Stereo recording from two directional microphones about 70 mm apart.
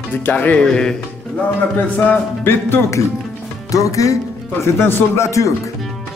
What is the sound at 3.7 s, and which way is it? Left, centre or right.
Music, left.